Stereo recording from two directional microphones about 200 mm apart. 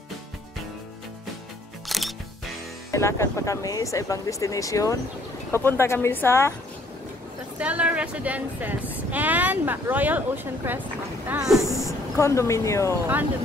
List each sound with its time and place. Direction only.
1.9 s music: centre (ahead or behind)
2.9 s speech: 15° left (ahead or behind)
7.5 s speech: 5° right (ahead or behind)
12.2 s speech: 15° left (ahead or behind)